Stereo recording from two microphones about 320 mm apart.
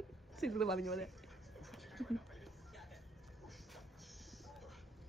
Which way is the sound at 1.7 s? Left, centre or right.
Centre.